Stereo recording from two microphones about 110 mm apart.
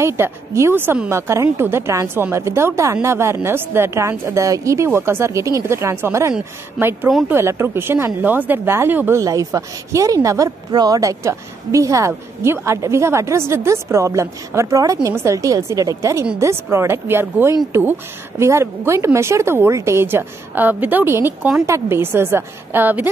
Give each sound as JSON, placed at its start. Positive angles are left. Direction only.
{"t": 0.0, "sound": "speech", "side_deg": -25}
{"t": 9.2, "sound": "speech", "side_deg": -30}